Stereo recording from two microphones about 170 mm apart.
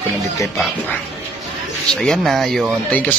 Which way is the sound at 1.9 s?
5° left (ahead or behind).